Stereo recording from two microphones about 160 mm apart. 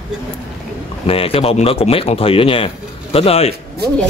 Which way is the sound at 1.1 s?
35° left (ahead or behind).